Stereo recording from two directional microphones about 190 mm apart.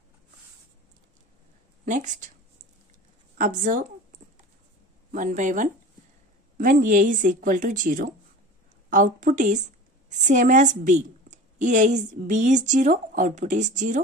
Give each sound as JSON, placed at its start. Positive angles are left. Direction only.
{"t": 1.9, "sound": "a woman's voice", "side_deg": -40}
{"t": 3.3, "sound": "a woman's voice", "side_deg": -45}
{"t": 5.1, "sound": "a woman's voice", "side_deg": -40}